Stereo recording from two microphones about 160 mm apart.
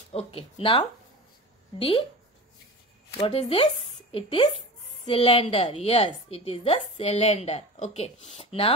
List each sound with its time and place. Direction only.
0.1 s speech: 35° left (ahead or behind)
3.2 s speech: 35° left (ahead or behind)